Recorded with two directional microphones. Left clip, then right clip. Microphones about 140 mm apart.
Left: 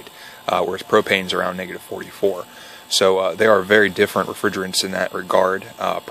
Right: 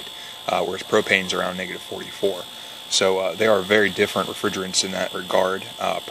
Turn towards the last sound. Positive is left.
turn(degrees=30)  # may be behind; listen again after turning